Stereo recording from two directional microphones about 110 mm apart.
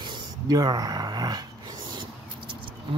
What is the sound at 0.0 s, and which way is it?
Speech, 40° right (ahead or behind).